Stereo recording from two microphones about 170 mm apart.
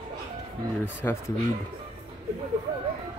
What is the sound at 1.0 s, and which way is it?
Speech, 15° left (ahead or behind).